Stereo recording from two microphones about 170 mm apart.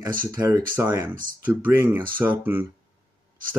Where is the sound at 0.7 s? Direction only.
15° right (ahead or behind).